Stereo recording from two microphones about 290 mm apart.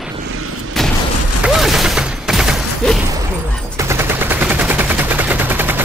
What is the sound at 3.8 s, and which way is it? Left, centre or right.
Gunshot, centre.